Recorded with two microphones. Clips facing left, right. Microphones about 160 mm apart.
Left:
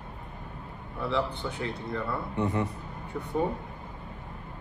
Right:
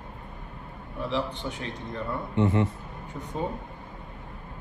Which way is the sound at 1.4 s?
20° right (ahead or behind).